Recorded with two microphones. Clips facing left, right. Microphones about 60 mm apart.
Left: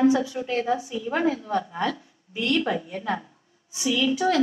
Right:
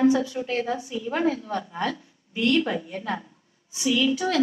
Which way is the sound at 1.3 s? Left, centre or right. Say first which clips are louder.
Left 3 dB; centre.